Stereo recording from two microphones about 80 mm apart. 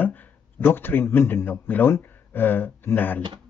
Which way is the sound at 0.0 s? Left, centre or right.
Left.